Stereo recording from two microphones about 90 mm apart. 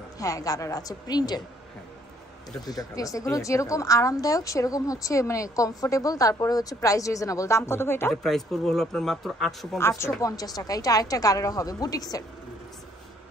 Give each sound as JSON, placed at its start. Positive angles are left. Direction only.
{"t": 0.2, "sound": "a woman's voice", "side_deg": 40}
{"t": 2.6, "sound": "a woman's voice", "side_deg": 45}
{"t": 8.1, "sound": "speech", "side_deg": 0}
{"t": 9.8, "sound": "speech", "side_deg": 30}
{"t": 10.2, "sound": "a woman's voice", "side_deg": 45}